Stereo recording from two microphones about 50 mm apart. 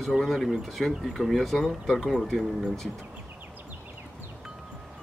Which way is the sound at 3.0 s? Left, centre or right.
Right.